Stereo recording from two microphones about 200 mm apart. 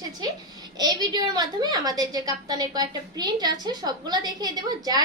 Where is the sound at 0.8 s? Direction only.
20° right (ahead or behind).